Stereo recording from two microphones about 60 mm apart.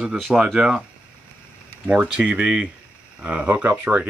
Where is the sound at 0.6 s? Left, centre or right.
Centre.